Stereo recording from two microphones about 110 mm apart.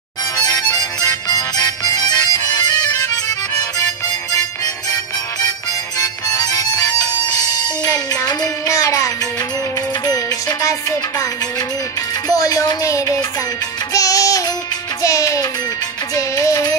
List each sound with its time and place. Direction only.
0.4 s music: 35° left (ahead or behind)
5.9 s music: 35° left (ahead or behind)
12.3 s music: 35° left (ahead or behind)